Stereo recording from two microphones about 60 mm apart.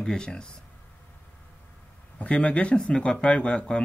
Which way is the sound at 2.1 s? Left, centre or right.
Left.